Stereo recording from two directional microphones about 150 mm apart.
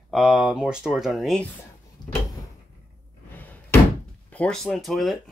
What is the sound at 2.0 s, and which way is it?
Drawer open or close, 25° left (ahead or behind).